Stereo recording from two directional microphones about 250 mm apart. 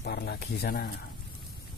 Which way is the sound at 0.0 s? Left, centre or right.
Left.